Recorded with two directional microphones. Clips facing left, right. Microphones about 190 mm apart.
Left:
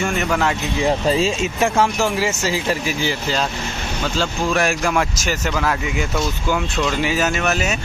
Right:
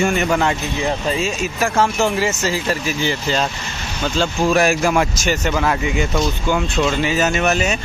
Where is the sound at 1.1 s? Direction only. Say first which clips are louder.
Left 3 dB; 30° left (ahead or behind).